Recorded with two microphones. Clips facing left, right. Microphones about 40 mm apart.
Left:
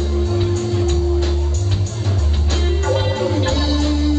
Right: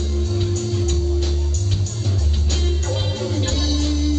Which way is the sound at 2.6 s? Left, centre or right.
Centre.